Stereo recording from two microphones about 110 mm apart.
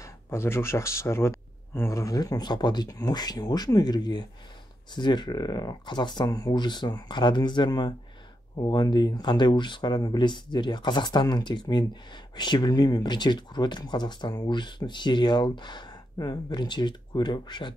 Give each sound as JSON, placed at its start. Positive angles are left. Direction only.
{"t": 0.0, "sound": "speech", "side_deg": 25}